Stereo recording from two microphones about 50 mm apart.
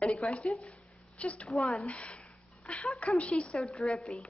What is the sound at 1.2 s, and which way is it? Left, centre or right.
Speech, left.